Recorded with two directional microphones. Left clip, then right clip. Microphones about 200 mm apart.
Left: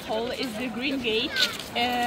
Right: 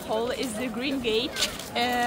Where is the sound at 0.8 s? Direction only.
35° right (ahead or behind).